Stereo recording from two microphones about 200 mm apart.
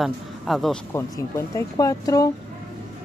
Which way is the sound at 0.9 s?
15° left (ahead or behind).